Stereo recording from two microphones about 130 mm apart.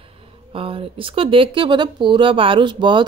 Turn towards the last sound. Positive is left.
turn(degrees=-35)  # may be behind; listen again after turning